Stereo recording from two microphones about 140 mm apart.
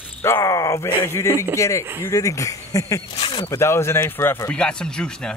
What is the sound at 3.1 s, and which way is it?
Zipper, 45° left (ahead or behind).